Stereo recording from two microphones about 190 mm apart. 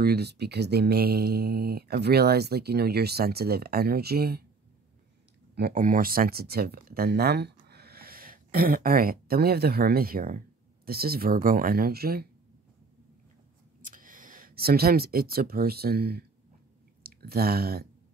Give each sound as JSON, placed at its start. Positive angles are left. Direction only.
{"t": 0.0, "sound": "speech", "side_deg": -60}
{"t": 5.6, "sound": "speech", "side_deg": -50}
{"t": 13.8, "sound": "speech", "side_deg": -45}